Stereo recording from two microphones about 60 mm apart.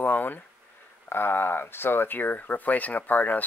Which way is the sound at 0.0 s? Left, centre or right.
Left.